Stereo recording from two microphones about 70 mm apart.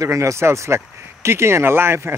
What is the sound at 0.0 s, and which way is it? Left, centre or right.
Speech, right.